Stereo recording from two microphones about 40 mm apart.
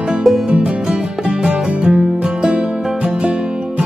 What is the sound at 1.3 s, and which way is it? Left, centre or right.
Music, right.